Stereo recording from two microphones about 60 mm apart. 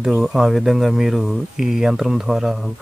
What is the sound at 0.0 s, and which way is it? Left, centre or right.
Speech, centre.